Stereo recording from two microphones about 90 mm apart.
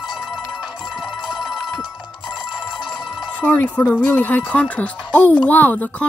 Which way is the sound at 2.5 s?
60° left (ahead or behind).